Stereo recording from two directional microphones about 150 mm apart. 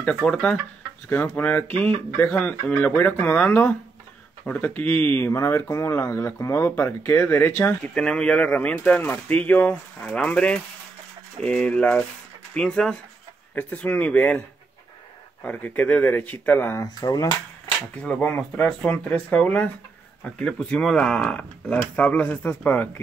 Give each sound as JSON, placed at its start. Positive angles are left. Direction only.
{"t": 0.0, "sound": "speech", "side_deg": 5}
{"t": 15.4, "sound": "speech", "side_deg": 10}
{"t": 17.9, "sound": "speech", "side_deg": 10}